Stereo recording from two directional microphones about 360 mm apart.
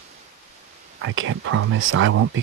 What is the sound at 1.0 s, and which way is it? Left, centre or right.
Whispering, right.